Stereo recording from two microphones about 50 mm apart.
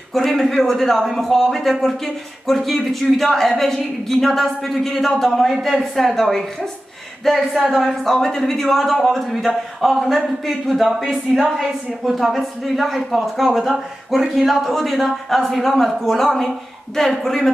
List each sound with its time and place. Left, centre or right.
0.1 s a man's voice: centre